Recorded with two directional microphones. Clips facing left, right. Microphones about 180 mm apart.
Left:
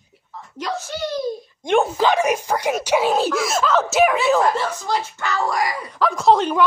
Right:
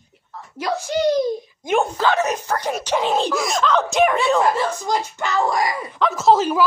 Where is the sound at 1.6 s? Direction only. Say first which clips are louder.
Left 2 dB; 5° right (ahead or behind).